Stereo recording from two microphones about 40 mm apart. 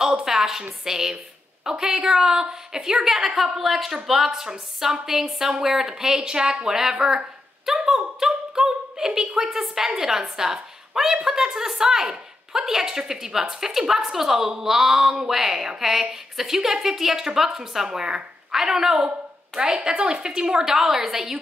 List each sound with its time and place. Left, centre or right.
0.0 s a woman's voice: centre